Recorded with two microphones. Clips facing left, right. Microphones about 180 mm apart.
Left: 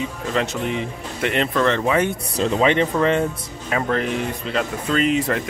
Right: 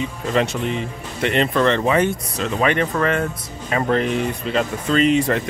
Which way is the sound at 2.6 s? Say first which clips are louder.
Left 1 dB; 20° left (ahead or behind).